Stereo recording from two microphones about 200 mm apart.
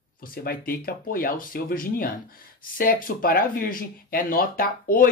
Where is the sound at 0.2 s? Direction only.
45° left (ahead or behind).